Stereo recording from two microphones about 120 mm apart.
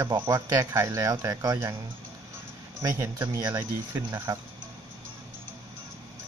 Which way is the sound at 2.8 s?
30° right (ahead or behind).